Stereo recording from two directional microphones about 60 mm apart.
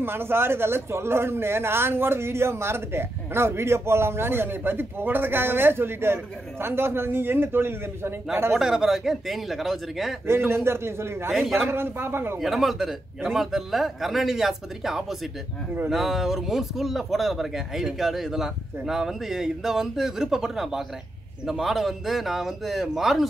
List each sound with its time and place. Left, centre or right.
0.0 s a man's voice: right
8.5 s speech: centre
10.2 s a man's voice: right
11.3 s speech: centre
11.6 s a man's voice: right
12.4 s speech: centre